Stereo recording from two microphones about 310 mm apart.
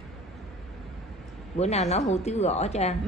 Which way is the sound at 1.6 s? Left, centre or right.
Left.